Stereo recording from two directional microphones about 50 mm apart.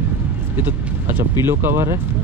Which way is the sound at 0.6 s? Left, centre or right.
Right.